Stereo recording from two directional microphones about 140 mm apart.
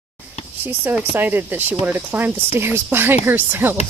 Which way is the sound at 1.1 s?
15° right (ahead or behind).